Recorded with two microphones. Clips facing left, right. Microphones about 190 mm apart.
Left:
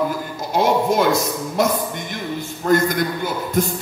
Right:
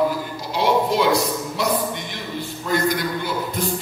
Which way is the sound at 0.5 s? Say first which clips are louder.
Left 2 dB; 50° left (ahead or behind).